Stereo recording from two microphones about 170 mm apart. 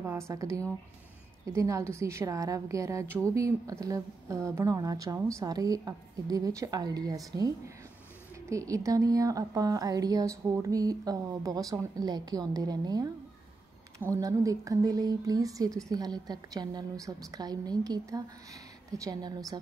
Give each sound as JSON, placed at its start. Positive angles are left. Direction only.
{"t": 0.3, "sound": "a woman's voice", "side_deg": -20}